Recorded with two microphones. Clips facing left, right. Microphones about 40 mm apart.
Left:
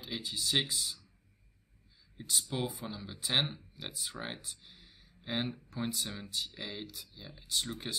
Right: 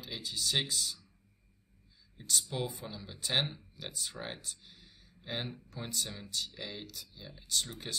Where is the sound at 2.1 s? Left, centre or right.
Centre.